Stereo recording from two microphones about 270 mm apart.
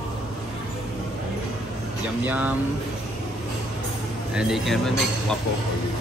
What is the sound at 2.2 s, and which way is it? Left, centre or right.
Mantra, centre.